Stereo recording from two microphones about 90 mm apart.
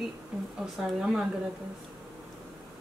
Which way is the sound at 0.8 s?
5° right (ahead or behind).